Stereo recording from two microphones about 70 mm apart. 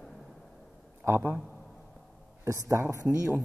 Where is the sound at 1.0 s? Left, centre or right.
Right.